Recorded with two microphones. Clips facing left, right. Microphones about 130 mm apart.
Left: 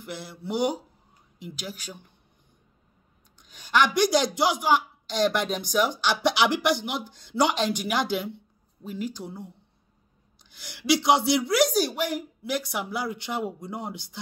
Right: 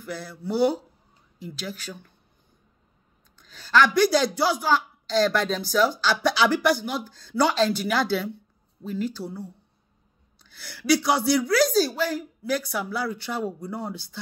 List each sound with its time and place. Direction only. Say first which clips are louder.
0.0 s a woman's voice: right 3 dB; 20° left (ahead or behind)
3.4 s a woman's voice: right 3 dB; 15° left (ahead or behind)